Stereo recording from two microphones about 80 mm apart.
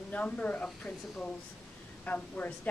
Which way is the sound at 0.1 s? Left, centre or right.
Centre.